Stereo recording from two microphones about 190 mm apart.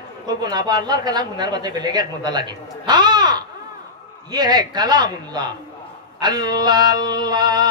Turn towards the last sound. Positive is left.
turn(degrees=-20)  # may be behind; listen again after turning